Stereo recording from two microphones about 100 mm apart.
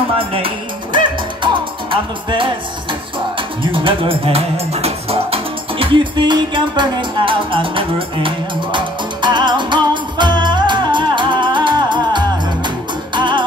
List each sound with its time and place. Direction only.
0.2 s music: 65° right (ahead or behind)
8.7 s music: 50° right (ahead or behind)